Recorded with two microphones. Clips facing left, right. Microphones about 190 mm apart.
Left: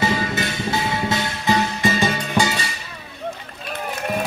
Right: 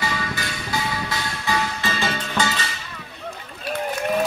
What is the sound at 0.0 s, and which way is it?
Music, 25° left (ahead or behind).